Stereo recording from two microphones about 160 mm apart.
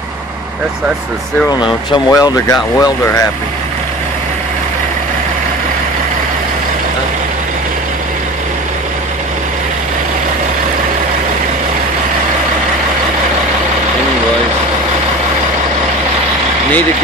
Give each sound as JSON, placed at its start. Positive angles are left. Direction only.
{"t": 1.6, "sound": "speech", "side_deg": 25}